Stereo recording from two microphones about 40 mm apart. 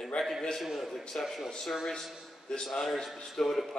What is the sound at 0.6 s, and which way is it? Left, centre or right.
Speech, centre.